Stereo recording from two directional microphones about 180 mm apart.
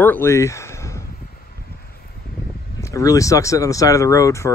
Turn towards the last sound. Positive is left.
turn(degrees=15)  # may be behind; listen again after turning